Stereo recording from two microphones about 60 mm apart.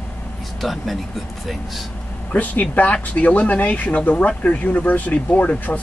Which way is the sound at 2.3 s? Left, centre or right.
Left.